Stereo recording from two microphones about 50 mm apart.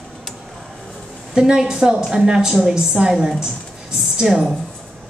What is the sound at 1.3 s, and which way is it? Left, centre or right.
A woman's voice, centre.